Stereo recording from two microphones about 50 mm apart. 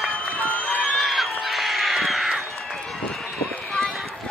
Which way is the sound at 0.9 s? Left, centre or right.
Centre.